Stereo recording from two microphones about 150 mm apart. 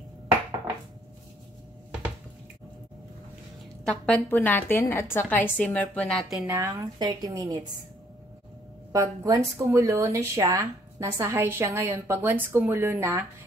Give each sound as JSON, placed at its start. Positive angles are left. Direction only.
{"t": 3.8, "sound": "a woman's voice", "side_deg": 5}
{"t": 6.4, "sound": "speech", "side_deg": -20}
{"t": 8.9, "sound": "a woman's voice", "side_deg": -20}